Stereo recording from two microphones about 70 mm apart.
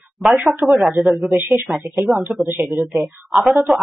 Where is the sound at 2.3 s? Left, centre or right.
Centre.